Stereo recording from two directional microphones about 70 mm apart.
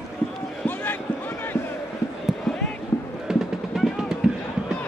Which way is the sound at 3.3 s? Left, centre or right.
Centre.